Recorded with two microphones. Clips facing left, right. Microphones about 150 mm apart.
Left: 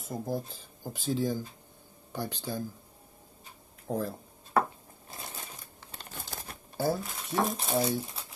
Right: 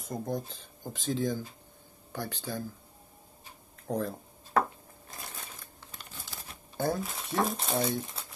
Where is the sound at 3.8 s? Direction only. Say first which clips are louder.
Even; 5° left (ahead or behind).